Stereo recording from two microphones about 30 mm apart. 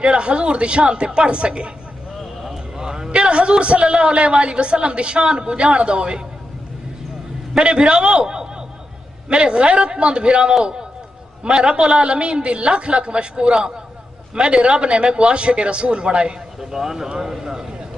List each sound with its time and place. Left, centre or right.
0.0 s a woman's voice: right
2.5 s a sound: right
3.1 s a woman's voice: right
7.5 s a man's voice: right
16.7 s a man's voice: centre